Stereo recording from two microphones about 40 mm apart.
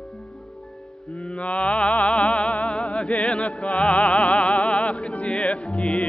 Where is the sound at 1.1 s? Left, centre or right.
Left.